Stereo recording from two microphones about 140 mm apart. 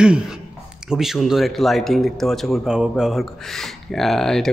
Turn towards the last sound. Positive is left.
turn(degrees=5)  # may be behind; listen again after turning